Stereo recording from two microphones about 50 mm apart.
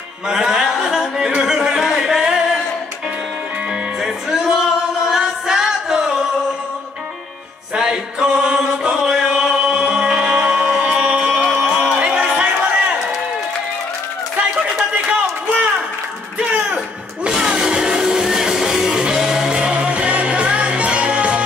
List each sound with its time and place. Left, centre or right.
0.3 s music: centre
0.8 s singing: centre
4.0 s music: centre
7.7 s music: centre
15.0 s a sound: right
16.3 s music: right